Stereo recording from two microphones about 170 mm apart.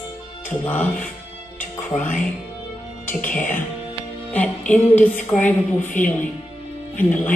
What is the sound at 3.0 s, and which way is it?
A woman's voice, 10° left (ahead or behind).